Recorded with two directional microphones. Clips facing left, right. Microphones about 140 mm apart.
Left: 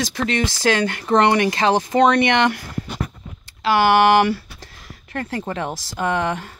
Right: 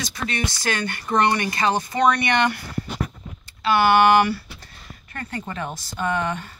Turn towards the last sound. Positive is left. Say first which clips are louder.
# left 3 dB
turn(degrees=85)